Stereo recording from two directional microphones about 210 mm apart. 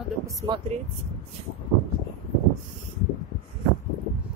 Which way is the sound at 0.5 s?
20° right (ahead or behind).